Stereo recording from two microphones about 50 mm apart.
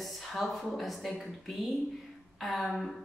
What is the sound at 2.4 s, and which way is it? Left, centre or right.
Speech, centre.